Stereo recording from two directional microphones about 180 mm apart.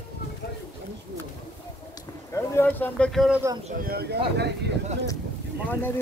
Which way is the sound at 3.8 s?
60° right (ahead or behind).